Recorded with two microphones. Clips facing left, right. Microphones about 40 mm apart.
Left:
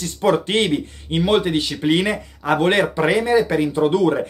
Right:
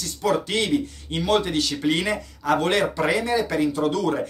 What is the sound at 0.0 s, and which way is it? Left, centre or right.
Speech, left.